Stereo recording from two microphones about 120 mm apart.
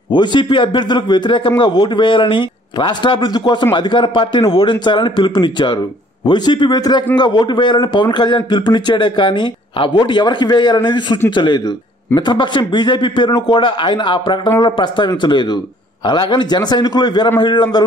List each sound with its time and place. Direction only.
0.1 s a man's voice: 40° left (ahead or behind)